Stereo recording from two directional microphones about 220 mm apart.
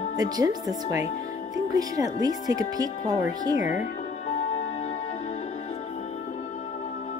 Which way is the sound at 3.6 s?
35° left (ahead or behind).